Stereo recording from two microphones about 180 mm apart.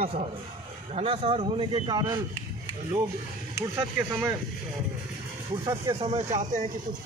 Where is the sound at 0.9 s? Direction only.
30° right (ahead or behind).